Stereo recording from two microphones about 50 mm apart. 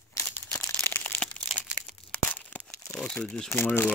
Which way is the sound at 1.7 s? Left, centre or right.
Left.